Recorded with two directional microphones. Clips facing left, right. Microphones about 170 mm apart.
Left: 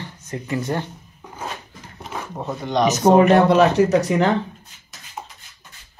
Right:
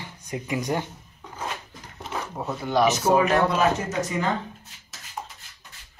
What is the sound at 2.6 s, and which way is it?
Speech, 5° right (ahead or behind).